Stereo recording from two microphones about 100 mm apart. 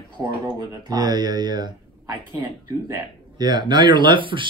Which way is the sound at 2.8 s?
35° right (ahead or behind).